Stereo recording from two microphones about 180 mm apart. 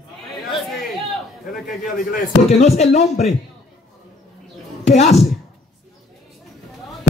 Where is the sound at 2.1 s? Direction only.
40° left (ahead or behind).